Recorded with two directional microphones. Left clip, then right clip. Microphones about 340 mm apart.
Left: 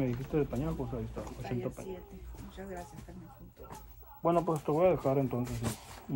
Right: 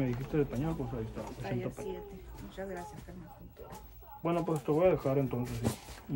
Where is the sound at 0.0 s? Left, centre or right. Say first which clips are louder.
Even; centre.